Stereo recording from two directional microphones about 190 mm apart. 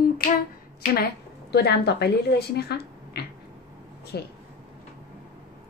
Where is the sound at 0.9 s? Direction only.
60° left (ahead or behind).